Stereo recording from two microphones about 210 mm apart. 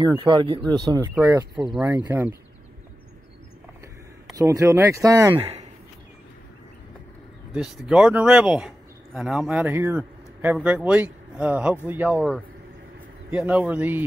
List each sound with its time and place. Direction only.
0.0 s speech: 20° right (ahead or behind)
4.3 s speech: 15° right (ahead or behind)
7.5 s speech: 5° right (ahead or behind)
13.3 s speech: 5° right (ahead or behind)